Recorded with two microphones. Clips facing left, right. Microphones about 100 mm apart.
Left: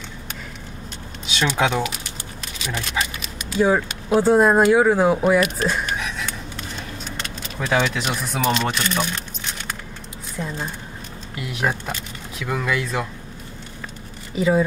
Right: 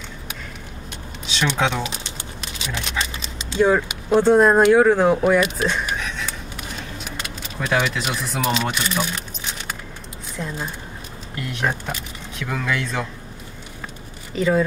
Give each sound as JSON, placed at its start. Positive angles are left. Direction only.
{"t": 1.5, "sound": "speech", "side_deg": 5}
{"t": 1.8, "sound": "speech", "side_deg": -25}
{"t": 2.7, "sound": "dog", "side_deg": -25}
{"t": 3.5, "sound": "speech", "side_deg": 5}
{"t": 5.6, "sound": "speech", "side_deg": -10}
{"t": 5.9, "sound": "a sound", "side_deg": 5}
{"t": 7.7, "sound": "speech", "side_deg": -5}
{"t": 10.3, "sound": "speech", "side_deg": 5}
{"t": 14.3, "sound": "speech", "side_deg": 10}